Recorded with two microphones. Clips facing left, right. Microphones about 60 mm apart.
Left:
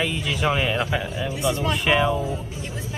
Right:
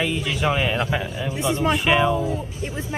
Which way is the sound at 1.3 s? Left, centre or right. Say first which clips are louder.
Right 3 dB; right.